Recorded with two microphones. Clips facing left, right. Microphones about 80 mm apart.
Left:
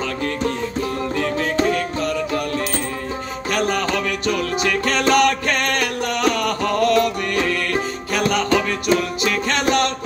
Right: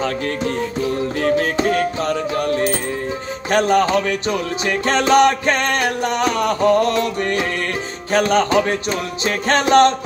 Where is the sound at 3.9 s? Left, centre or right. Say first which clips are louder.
Right 3 dB; right.